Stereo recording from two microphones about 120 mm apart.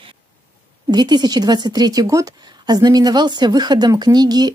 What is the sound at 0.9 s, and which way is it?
Speech, 35° right (ahead or behind).